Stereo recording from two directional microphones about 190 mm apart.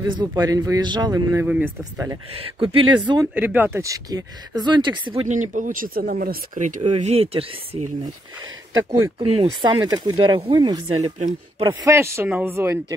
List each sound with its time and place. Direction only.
0.0 s speech: 25° right (ahead or behind)
2.3 s speech: 30° right (ahead or behind)
3.3 s speech: 10° right (ahead or behind); by 5.2 s 25° right (ahead or behind)
5.3 s speech: 40° right (ahead or behind)
6.8 s speech: 30° right (ahead or behind)
9.3 s speech: 25° right (ahead or behind)